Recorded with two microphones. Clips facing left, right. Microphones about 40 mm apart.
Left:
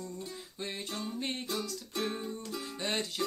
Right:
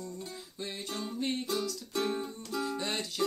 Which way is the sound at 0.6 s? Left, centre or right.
Centre.